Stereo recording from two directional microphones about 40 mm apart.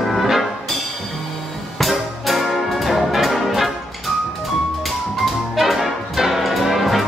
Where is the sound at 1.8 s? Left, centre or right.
Centre.